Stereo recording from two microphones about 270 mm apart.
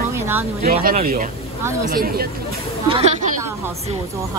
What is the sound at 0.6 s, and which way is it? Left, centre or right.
Speech, right.